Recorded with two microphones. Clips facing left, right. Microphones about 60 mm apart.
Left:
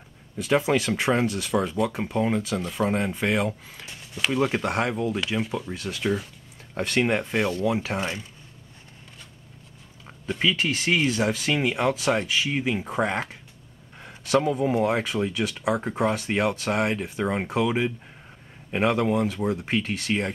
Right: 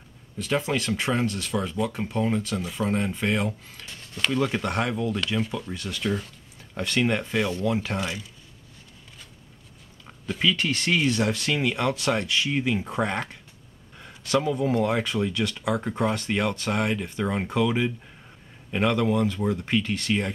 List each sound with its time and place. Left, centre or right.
0.4 s speech: centre
8.0 s speech: left
10.4 s speech: centre